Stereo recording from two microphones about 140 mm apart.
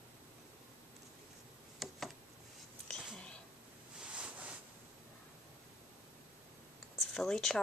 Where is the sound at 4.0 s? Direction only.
5° right (ahead or behind).